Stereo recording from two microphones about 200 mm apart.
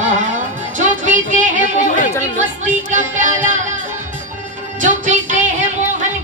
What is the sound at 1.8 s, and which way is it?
Chatter, 40° left (ahead or behind).